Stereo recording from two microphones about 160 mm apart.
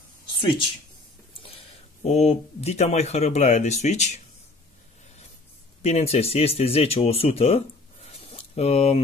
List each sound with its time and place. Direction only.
2.0 s speech: 40° left (ahead or behind)
5.8 s speech: 40° left (ahead or behind)